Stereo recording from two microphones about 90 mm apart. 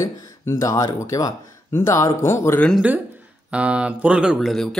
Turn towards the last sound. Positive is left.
turn(degrees=5)  # may be behind; listen again after turning